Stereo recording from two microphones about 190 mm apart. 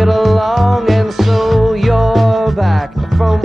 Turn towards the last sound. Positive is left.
turn(degrees=0)  # may be behind; listen again after turning